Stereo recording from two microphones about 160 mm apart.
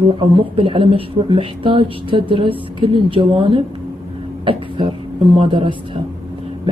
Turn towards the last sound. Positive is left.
turn(degrees=-30)  # may be behind; listen again after turning